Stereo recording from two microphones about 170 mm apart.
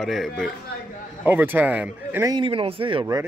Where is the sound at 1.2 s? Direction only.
10° right (ahead or behind).